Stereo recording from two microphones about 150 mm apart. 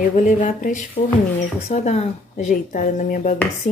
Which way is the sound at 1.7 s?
45° left (ahead or behind).